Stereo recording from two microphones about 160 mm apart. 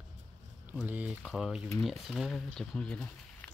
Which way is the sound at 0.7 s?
10° right (ahead or behind).